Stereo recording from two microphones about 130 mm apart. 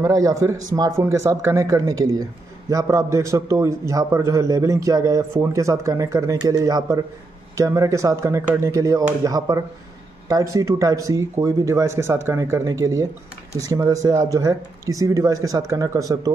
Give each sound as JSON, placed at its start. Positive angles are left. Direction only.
{"t": 0.0, "sound": "a man's voice", "side_deg": -25}